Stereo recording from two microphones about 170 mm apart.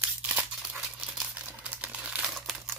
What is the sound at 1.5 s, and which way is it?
Typing, 10° right (ahead or behind).